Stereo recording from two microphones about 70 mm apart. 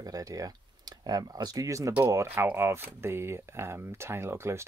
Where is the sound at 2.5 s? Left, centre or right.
Right.